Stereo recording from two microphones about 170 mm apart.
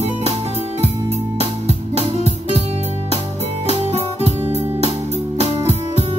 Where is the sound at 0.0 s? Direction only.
40° right (ahead or behind).